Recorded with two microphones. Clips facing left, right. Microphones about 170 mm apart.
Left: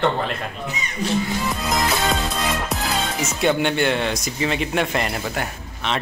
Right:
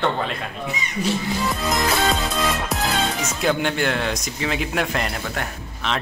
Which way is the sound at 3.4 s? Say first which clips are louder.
Left 2 dB; centre (ahead or behind).